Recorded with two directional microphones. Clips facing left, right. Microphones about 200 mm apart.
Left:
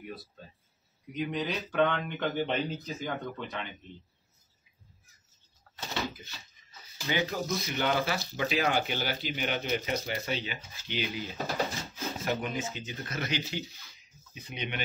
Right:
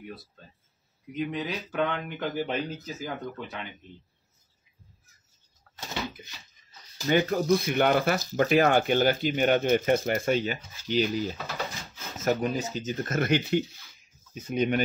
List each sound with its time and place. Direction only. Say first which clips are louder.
0.0 s speech: even; centre (ahead or behind)
7.0 s speech: right 7 dB; 50° right (ahead or behind)